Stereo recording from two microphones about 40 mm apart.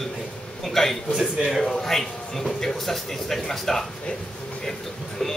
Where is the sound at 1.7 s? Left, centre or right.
Centre.